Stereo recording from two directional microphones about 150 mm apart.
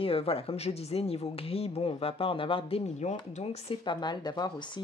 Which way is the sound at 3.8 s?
30° left (ahead or behind).